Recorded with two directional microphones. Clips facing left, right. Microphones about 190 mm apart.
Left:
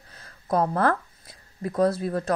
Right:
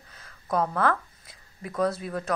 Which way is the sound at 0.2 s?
35° left (ahead or behind).